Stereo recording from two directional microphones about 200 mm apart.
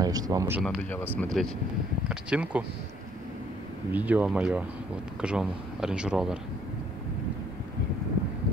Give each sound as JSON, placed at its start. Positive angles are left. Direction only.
{"t": 0.0, "sound": "speech", "side_deg": -20}
{"t": 1.1, "sound": "a man's voice", "side_deg": 0}
{"t": 3.9, "sound": "a man's voice", "side_deg": -10}